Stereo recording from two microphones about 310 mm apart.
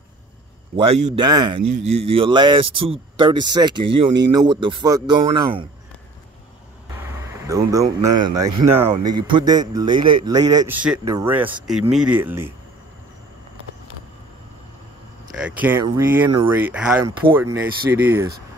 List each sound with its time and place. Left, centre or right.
0.7 s a man's voice: centre
7.4 s a man's voice: centre
15.3 s a man's voice: centre